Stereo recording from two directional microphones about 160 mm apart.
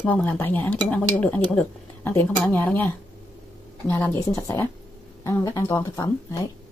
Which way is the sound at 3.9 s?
15° left (ahead or behind).